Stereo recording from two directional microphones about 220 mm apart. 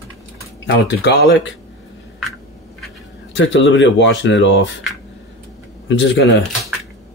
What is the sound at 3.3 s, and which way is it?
Speech, 55° left (ahead or behind).